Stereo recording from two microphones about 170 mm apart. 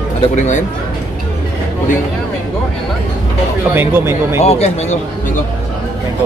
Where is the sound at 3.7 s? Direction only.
15° right (ahead or behind).